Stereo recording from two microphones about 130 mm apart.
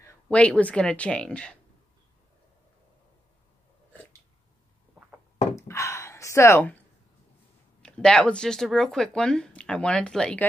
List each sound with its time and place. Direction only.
0.3 s speech: 10° left (ahead or behind)
5.6 s a sound: 20° left (ahead or behind)
7.8 s speech: 5° left (ahead or behind)